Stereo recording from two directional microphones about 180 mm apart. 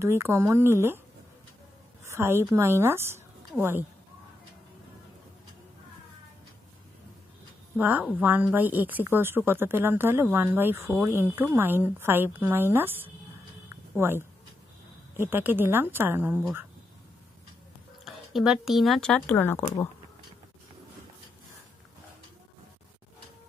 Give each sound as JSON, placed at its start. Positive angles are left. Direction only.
{"t": 0.0, "sound": "a woman's voice", "side_deg": -15}
{"t": 2.0, "sound": "a woman's voice", "side_deg": -15}
{"t": 7.7, "sound": "a woman's voice", "side_deg": -10}
{"t": 18.0, "sound": "speech", "side_deg": 0}